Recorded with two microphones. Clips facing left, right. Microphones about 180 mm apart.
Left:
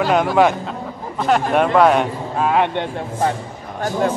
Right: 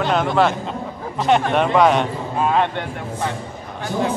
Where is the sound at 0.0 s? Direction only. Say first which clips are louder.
Left 3 dB; 5° left (ahead or behind).